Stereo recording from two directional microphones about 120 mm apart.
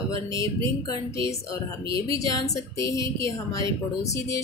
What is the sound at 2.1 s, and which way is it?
A woman's voice, 30° left (ahead or behind).